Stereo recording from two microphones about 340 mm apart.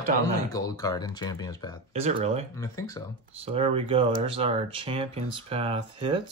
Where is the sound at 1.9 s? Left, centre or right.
Centre.